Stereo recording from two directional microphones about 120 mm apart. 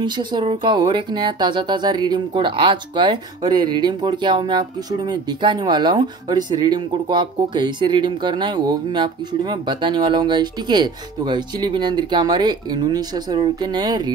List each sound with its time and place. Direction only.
0.0 s speech: 40° right (ahead or behind)